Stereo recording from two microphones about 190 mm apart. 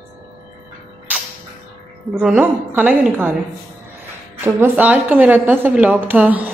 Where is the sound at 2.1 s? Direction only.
5° right (ahead or behind).